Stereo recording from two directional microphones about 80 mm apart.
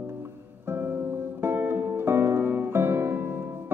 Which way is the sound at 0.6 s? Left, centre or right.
Right.